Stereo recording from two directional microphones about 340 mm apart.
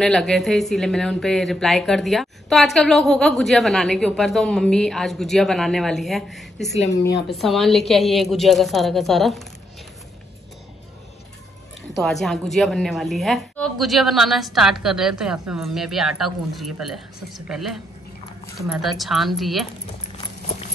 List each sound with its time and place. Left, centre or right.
0.0 s speech: centre
6.9 s a woman's voice: left
7.3 s speech: centre
11.9 s speech: centre
18.7 s speech: centre